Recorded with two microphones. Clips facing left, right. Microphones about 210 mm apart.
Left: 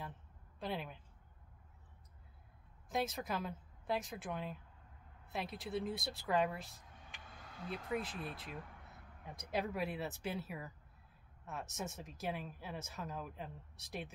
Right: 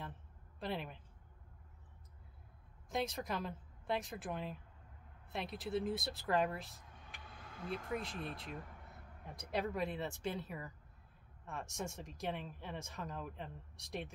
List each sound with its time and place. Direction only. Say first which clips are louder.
0.6 s speech: even; centre (ahead or behind)
2.9 s speech: even; centre (ahead or behind)
7.2 s a sound: right 2 dB; 45° left (ahead or behind)
7.5 s speech: even; 50° right (ahead or behind)
8.0 s speech: even; centre (ahead or behind)
9.3 s speech: even; centre (ahead or behind)